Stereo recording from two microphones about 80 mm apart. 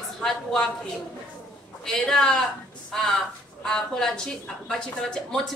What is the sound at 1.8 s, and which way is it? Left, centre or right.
A woman's voice, centre.